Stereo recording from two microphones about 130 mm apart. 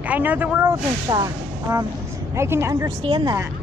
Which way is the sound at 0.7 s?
30° right (ahead or behind).